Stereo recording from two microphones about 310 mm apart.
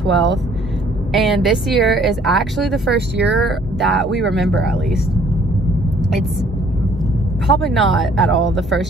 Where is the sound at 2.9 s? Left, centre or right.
Right.